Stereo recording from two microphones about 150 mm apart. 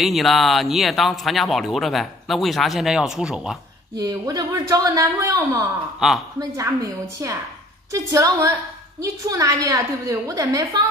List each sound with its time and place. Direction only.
0.0 s speech: centre (ahead or behind)
3.9 s a woman's voice: 25° right (ahead or behind)
5.9 s speech: centre (ahead or behind)
6.5 s a woman's voice: 20° right (ahead or behind)